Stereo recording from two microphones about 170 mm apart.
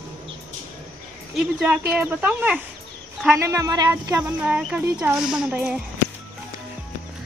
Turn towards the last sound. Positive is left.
turn(degrees=-5)  # may be behind; listen again after turning